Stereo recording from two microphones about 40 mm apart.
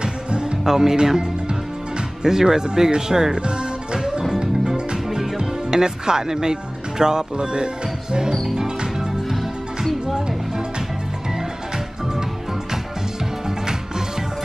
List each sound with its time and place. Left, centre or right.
0.0 s music: right
0.7 s speech: centre
4.3 s music: centre
5.4 s speech: centre
8.5 s music: centre
9.4 s music: centre